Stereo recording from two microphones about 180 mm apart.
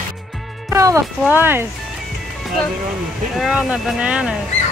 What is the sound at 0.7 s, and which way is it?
Speech, 15° right (ahead or behind).